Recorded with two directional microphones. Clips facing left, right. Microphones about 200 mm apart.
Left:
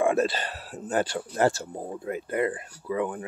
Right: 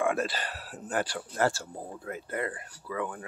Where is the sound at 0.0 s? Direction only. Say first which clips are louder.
Left 5 dB; 25° left (ahead or behind).